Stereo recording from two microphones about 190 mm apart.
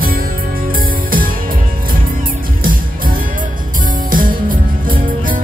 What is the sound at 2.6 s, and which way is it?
Music, 45° right (ahead or behind).